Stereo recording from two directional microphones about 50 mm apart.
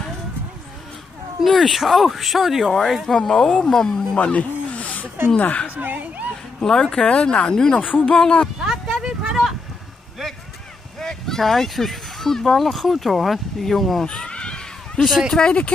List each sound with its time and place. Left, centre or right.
1.4 s speech: centre
4.2 s snake: left
5.4 s speech: left
5.8 s speech: right
6.6 s speech: centre
7.1 s speech: left
7.8 s speech: left
8.1 s speech: centre
8.5 s a sound: centre
11.0 s speech: centre
14.0 s a sound: centre
15.0 s speech: centre
15.3 s speech: centre